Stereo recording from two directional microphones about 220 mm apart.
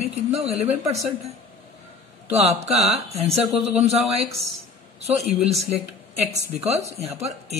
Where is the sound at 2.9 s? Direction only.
30° right (ahead or behind).